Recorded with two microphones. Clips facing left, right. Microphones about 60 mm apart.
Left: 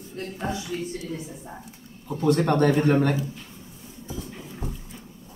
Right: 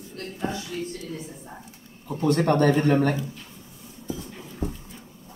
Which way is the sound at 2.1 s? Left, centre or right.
Right.